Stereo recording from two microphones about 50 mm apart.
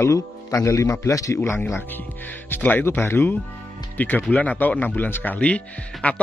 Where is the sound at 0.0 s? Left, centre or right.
Left.